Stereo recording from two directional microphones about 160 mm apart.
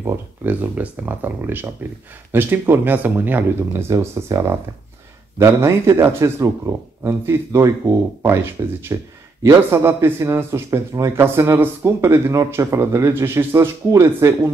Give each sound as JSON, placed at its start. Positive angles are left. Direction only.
{"t": 0.0, "sound": "a man's voice", "side_deg": -10}